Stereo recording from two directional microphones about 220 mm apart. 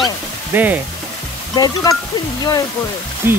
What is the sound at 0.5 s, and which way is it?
Speech, 10° right (ahead or behind).